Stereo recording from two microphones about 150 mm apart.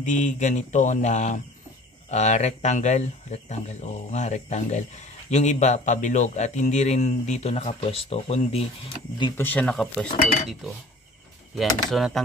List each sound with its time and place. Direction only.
0.0 s speech: 55° left (ahead or behind); by 9.3 s 40° left (ahead or behind)
9.4 s speech: 10° left (ahead or behind)
11.5 s speech: centre (ahead or behind)